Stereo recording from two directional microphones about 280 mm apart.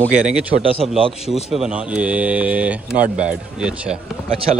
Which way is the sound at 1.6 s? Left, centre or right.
Centre.